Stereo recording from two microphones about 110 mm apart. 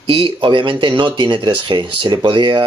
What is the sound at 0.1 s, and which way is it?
Speech, 55° right (ahead or behind).